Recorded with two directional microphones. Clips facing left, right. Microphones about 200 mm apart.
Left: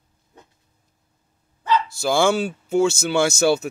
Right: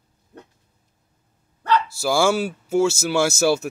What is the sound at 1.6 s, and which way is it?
Dog, 65° right (ahead or behind).